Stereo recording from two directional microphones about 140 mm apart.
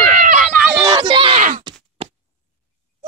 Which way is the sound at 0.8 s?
30° right (ahead or behind).